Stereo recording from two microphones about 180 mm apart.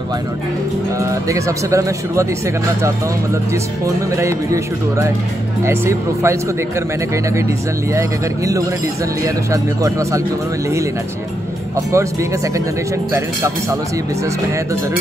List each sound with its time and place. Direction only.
0.9 s speech: 15° right (ahead or behind)
3.8 s speech: 15° right (ahead or behind)
7.9 s speech: 15° right (ahead or behind)
11.9 s speech: 15° right (ahead or behind)